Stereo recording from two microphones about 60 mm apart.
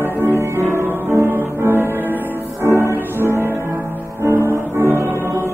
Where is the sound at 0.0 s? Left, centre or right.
Right.